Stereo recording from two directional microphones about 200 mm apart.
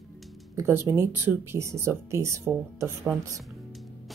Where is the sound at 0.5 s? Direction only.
10° right (ahead or behind).